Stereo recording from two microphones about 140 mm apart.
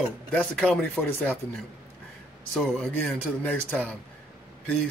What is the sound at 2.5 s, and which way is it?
A man's voice, 10° left (ahead or behind).